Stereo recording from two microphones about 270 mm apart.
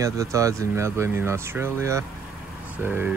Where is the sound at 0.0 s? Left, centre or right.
Centre.